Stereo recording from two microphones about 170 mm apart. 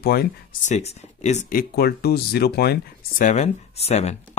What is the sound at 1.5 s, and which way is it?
Speech, 65° left (ahead or behind).